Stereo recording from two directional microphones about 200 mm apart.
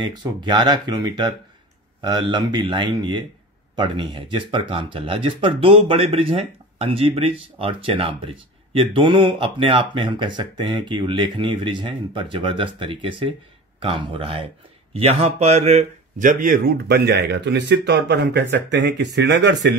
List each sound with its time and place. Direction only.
0.0 s speech: 20° right (ahead or behind); by 19.7 s 60° right (ahead or behind)